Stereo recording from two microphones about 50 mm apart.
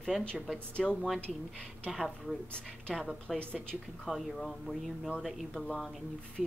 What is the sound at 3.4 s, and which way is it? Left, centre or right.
Speech, left.